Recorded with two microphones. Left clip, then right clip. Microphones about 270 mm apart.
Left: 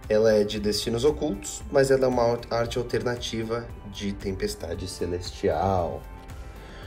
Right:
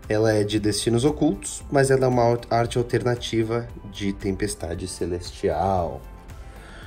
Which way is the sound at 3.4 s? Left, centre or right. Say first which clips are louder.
Right 4 dB; right.